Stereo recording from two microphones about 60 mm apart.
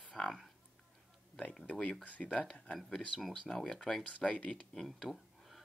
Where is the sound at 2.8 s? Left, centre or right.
Centre.